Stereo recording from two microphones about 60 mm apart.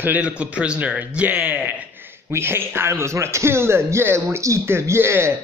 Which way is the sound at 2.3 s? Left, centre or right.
Right.